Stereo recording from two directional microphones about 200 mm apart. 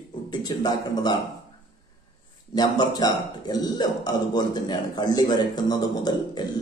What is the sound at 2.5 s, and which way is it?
A man's voice, 20° left (ahead or behind).